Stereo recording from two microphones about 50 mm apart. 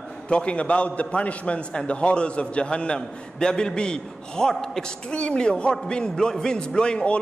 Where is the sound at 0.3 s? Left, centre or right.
Left.